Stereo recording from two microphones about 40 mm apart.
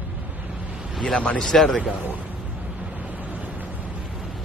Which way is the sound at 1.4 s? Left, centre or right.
Centre.